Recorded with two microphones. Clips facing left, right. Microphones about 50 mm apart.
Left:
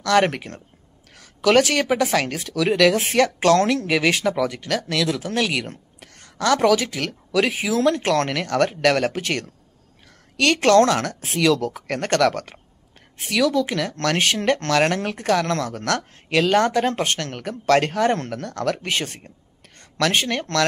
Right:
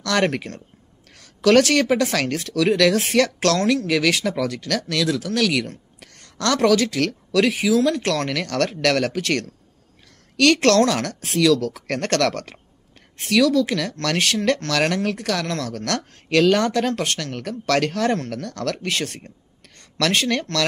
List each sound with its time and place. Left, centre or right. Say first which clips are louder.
0.0 s speech: left 2 dB; centre
3.5 s speech: left 1 dB; left
7.7 s speech: left 1 dB; left
8.3 s a woman's voice: left 2 dB; centre
11.9 s speech: left 2 dB; centre
16.5 s speech: left 2 dB; left
17.4 s speech: left 5 dB; centre
17.7 s speech: even; left